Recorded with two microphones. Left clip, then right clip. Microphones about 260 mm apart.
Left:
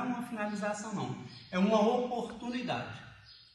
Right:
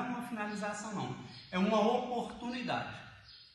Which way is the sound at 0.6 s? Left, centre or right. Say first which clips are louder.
Left 3 dB; centre.